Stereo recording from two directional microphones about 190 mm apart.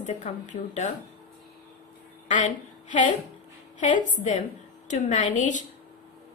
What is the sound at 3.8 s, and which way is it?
A woman's voice, 40° left (ahead or behind).